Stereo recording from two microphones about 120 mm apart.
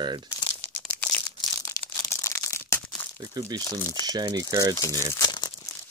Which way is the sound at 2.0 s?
25° left (ahead or behind).